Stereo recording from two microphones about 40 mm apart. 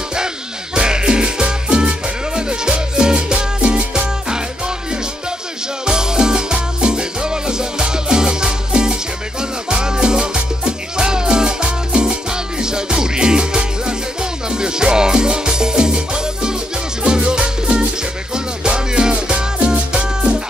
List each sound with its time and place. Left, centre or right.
0.7 s music: centre
5.9 s music: centre